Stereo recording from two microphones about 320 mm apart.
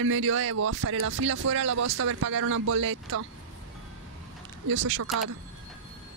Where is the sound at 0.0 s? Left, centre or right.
Right.